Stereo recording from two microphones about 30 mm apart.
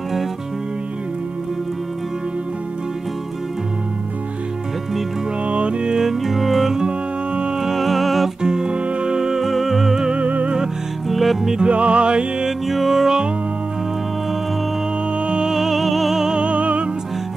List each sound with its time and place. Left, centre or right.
5.5 s music: right
6.2 s music: centre
6.9 s music: right
7.7 s music: centre
8.4 s music: right
9.4 s music: centre
10.1 s music: right
11.1 s music: centre
11.6 s music: right
12.4 s music: centre
15.4 s music: centre
16.3 s music: right